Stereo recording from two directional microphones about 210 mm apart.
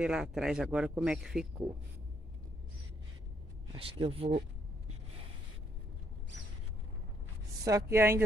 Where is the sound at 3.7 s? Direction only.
25° right (ahead or behind).